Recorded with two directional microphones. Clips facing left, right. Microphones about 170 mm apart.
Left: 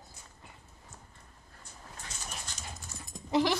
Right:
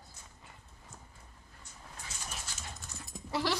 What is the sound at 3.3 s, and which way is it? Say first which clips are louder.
Speech: left 6 dB; 15° left (ahead or behind).